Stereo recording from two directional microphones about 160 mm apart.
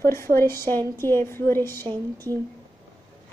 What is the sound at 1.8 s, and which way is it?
Speech, 20° right (ahead or behind).